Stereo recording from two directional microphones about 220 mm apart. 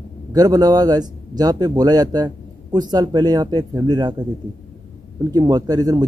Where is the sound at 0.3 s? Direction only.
15° right (ahead or behind).